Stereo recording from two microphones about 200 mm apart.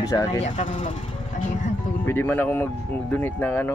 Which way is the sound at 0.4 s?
30° left (ahead or behind).